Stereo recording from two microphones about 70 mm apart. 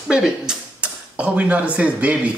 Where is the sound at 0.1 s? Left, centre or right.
Centre.